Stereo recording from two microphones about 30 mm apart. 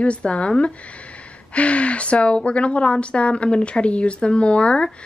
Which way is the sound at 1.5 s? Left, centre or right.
Left.